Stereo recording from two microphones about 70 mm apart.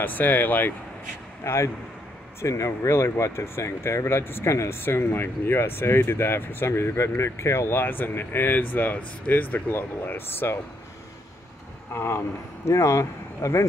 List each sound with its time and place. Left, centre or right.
0.0 s speech: left
1.4 s speech: left
11.9 s speech: left
12.6 s speech: left